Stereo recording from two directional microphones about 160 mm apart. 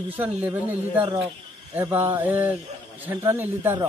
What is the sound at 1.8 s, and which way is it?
A man's voice, 15° right (ahead or behind).